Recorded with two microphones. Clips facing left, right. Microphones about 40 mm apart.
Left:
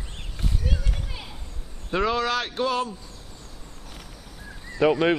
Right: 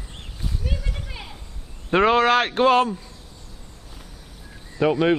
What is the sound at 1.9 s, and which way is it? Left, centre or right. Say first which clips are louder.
A man's voice: right 7 dB; right.